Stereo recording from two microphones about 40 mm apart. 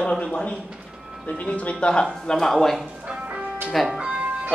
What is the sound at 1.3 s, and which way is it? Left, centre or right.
Speech, left.